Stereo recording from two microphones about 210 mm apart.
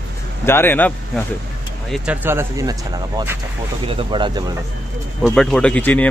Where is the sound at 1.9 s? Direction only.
5° right (ahead or behind); by 4.5 s 20° right (ahead or behind).